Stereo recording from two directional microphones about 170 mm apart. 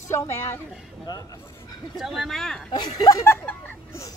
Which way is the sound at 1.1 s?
20° left (ahead or behind).